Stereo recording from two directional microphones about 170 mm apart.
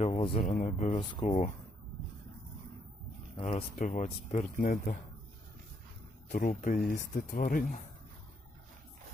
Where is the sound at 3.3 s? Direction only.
40° left (ahead or behind).